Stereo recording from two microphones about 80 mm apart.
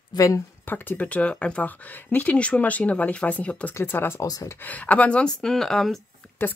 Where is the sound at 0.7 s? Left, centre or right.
Left.